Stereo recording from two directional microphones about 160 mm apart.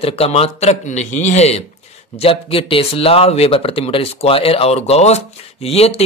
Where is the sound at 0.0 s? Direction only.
40° left (ahead or behind).